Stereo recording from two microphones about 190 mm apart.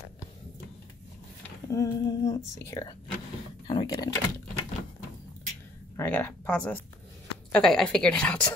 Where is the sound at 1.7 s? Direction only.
20° left (ahead or behind).